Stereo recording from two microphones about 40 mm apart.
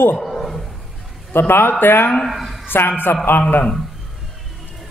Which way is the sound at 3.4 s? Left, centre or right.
Left.